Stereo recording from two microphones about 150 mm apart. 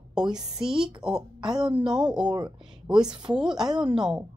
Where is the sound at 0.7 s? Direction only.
35° right (ahead or behind).